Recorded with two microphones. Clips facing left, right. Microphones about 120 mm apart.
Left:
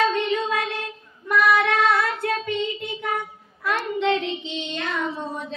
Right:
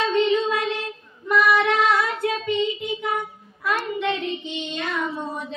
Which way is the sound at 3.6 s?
Centre (ahead or behind).